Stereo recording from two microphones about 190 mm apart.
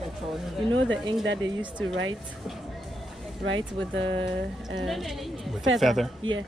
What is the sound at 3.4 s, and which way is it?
Speech, 80° right.